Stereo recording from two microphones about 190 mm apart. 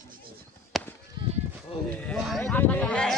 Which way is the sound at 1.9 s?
5° left (ahead or behind).